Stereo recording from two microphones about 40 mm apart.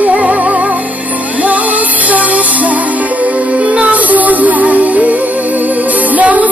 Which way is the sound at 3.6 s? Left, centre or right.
Right.